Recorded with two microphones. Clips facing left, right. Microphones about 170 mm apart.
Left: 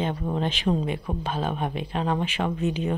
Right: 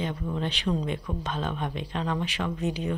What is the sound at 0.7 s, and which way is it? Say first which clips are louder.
Speech: left 3 dB; 40° left (ahead or behind).